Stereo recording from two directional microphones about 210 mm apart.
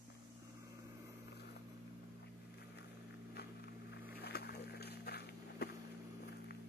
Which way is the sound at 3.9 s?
50° left (ahead or behind).